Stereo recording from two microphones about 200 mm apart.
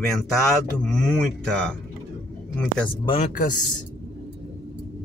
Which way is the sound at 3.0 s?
30° left (ahead or behind).